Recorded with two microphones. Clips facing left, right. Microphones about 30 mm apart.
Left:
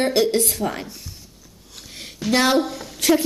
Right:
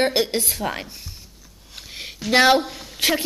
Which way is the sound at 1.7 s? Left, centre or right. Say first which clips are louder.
Right 3 dB; centre.